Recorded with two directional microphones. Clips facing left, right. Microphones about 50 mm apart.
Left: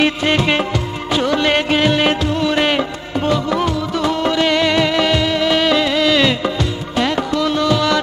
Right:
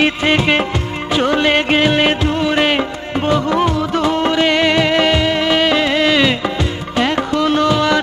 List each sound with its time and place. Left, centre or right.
0.0 s music of bollywood: centre
1.2 s music of bollywood: right
2.4 s music: centre; by 7.6 s right
7.6 s music: right